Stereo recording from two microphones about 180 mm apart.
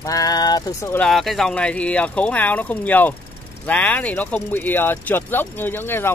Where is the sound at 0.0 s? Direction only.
20° left (ahead or behind).